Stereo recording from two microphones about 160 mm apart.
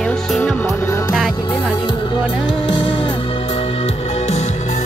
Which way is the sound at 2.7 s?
30° left (ahead or behind).